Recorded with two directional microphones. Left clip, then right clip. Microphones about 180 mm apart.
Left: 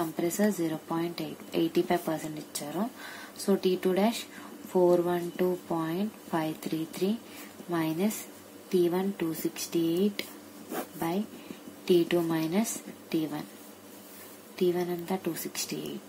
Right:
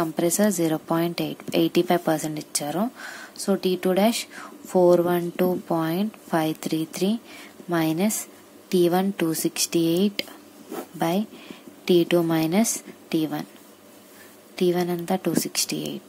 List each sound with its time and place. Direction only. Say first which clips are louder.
0.0 s a woman's voice: right 7 dB; 40° right (ahead or behind)
11.8 s a woman's voice: right 5 dB; 40° right (ahead or behind)
14.6 s speech: right 5 dB; 45° right (ahead or behind)